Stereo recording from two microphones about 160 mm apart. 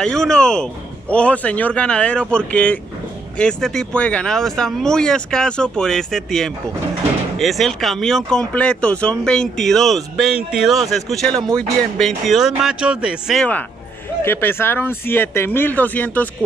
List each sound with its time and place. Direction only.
0.0 s speech: 5° left (ahead or behind)
14.2 s speech: 15° left (ahead or behind)